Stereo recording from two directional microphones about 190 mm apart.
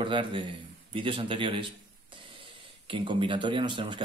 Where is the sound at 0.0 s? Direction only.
25° right (ahead or behind).